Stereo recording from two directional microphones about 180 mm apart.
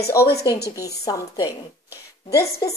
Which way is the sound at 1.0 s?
20° left (ahead or behind).